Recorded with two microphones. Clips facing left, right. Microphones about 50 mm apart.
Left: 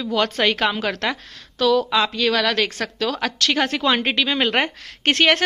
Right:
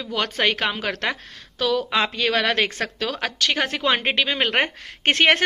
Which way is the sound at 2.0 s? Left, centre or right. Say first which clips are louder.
Left 2 dB; right.